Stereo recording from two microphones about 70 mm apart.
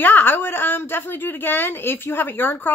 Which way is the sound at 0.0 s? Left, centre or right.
Left.